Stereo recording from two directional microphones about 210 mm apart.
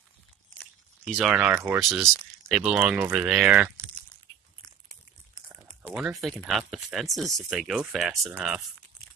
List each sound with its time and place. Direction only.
1.0 s speech: centre (ahead or behind)
5.5 s speech: 5° right (ahead or behind)